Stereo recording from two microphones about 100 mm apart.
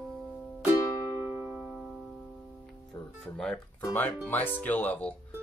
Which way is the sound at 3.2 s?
10° left (ahead or behind).